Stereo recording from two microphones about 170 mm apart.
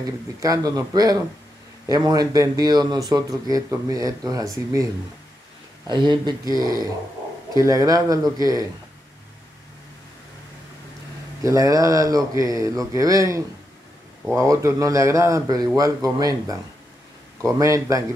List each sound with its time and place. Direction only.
0.4 s speech: 20° right (ahead or behind)
5.9 s speech: 25° right (ahead or behind)
11.4 s speech: 20° right (ahead or behind)
17.6 s speech: 20° right (ahead or behind)